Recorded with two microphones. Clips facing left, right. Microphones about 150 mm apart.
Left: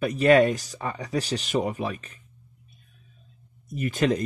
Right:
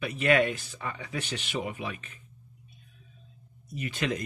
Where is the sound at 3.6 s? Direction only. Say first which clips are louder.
Left 8 dB; 45° left (ahead or behind).